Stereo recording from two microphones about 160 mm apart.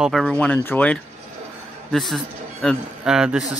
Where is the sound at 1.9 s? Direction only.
Centre (ahead or behind).